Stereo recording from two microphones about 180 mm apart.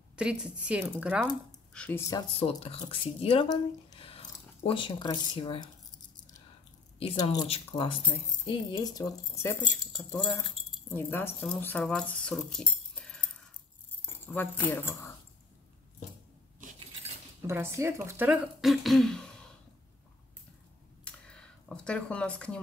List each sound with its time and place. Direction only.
0.1 s speech: 5° right (ahead or behind)
1.7 s speech: 10° left (ahead or behind)
2.3 s speech: 35° left (ahead or behind)
7.0 s speech: 30° left (ahead or behind); by 9.6 s 15° left (ahead or behind)
10.7 s speech: 10° left (ahead or behind)
17.5 s speech: 15° right (ahead or behind); by 19.4 s 5° left (ahead or behind)
21.0 s dishes: 5° left (ahead or behind)